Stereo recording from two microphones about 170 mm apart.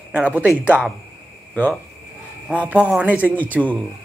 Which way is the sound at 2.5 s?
10° right (ahead or behind).